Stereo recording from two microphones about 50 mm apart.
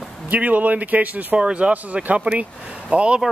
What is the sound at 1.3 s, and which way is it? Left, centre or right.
Speech, right.